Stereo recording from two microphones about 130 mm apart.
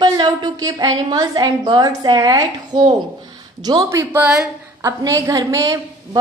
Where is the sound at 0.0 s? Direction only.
30° right (ahead or behind).